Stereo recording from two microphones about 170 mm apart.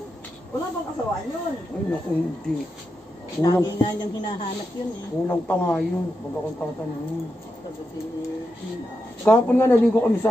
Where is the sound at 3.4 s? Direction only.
25° left (ahead or behind).